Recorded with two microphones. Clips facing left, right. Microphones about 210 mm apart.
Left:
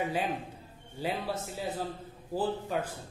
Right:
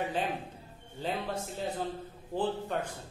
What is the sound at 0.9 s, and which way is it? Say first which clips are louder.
A man's voice: left 1 dB; 10° left (ahead or behind).